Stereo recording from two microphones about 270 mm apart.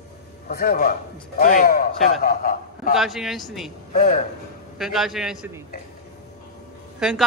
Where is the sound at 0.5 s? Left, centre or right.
Left.